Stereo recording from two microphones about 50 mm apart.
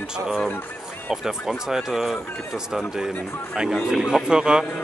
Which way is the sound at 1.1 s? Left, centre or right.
Centre.